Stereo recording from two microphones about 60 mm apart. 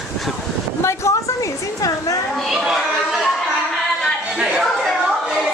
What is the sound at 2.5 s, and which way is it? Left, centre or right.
Speech, centre.